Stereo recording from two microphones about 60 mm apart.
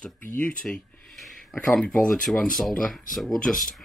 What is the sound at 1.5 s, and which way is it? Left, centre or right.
Speech, centre.